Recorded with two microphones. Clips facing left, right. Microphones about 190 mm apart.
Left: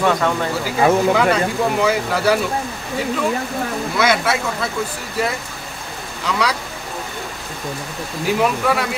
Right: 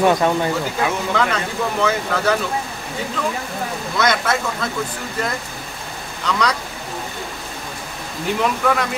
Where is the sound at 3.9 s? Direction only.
5° left (ahead or behind).